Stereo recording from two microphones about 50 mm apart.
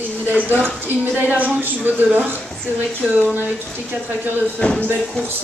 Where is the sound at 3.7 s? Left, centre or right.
Right.